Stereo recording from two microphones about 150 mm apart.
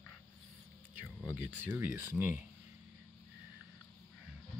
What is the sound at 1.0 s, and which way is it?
Speech, 10° right (ahead or behind).